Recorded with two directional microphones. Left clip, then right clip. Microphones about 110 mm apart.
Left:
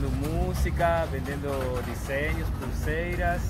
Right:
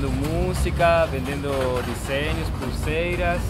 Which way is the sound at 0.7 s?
10° right (ahead or behind).